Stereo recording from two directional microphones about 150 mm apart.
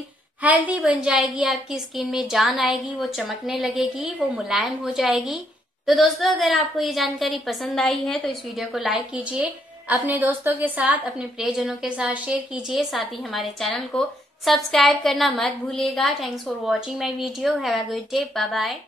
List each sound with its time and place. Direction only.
0.4 s a woman's voice: 10° right (ahead or behind)